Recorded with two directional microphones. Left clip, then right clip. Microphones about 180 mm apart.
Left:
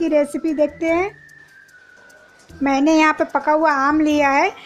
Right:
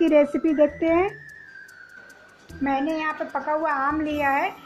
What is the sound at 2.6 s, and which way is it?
A child's voice, 45° left (ahead or behind).